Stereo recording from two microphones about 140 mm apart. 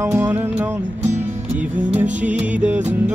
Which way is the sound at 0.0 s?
15° right (ahead or behind).